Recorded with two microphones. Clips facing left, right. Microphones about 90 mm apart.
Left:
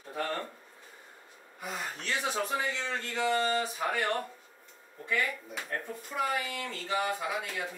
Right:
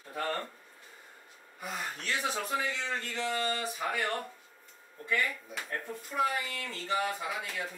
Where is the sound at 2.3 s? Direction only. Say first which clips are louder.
Left 2 dB; 5° left (ahead or behind).